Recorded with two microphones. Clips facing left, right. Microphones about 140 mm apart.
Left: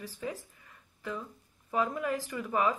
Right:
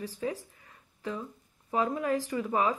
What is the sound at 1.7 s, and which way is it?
Speech, 30° right (ahead or behind).